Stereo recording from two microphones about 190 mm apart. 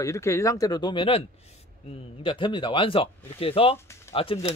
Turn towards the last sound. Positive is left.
turn(degrees=30)  # may be behind; listen again after turning